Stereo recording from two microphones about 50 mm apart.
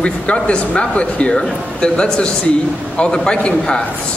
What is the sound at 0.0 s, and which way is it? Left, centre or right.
A man's voice, left.